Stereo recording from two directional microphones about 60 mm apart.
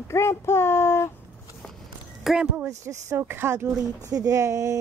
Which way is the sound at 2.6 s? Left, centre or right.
Right.